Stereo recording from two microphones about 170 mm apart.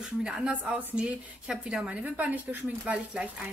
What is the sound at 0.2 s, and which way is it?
A woman's voice, 5° right (ahead or behind).